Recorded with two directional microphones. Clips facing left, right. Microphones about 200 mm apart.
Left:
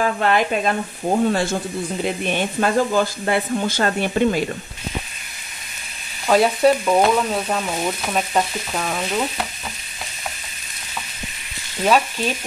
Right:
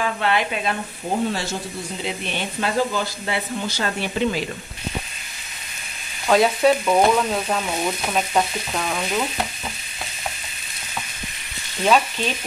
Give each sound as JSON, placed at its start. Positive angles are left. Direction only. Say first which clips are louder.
{"t": 0.0, "sound": "speech", "louder": "left 3 dB", "side_deg": 45}
{"t": 6.2, "sound": "frying", "louder": "left 1 dB", "side_deg": 5}
{"t": 11.8, "sound": "speech", "louder": "left 1 dB", "side_deg": 5}